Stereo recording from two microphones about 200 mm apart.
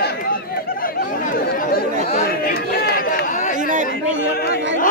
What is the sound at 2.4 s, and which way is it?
Chatter, 50° left (ahead or behind).